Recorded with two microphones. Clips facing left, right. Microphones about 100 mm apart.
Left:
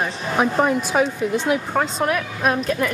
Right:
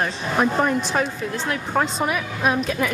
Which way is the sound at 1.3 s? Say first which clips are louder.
Left 8 dB; 20° left (ahead or behind).